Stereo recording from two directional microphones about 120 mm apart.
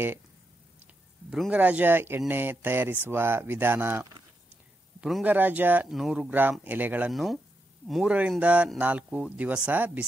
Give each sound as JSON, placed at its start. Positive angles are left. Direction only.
{"t": 1.3, "sound": "speech", "side_deg": 0}
{"t": 1.6, "sound": "speech", "side_deg": -15}
{"t": 5.2, "sound": "speech", "side_deg": -15}
{"t": 5.9, "sound": "speech", "side_deg": -5}
{"t": 6.6, "sound": "speech", "side_deg": -15}
{"t": 7.1, "sound": "speech", "side_deg": 0}
{"t": 8.1, "sound": "speech", "side_deg": -10}